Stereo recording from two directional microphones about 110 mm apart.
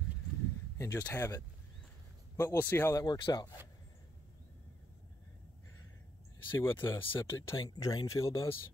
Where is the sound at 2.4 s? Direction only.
20° left (ahead or behind).